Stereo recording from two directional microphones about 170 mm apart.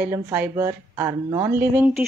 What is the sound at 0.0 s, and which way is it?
Speech, 10° right (ahead or behind).